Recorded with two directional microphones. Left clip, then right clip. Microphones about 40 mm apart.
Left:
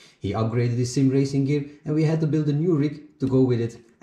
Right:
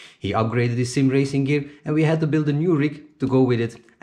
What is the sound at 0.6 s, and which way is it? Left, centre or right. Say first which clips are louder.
Speech: right 3 dB; right.